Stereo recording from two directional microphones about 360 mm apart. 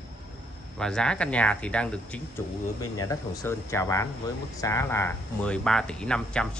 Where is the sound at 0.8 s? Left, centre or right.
Centre.